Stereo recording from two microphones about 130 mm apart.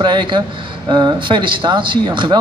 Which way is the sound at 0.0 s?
35° right (ahead or behind).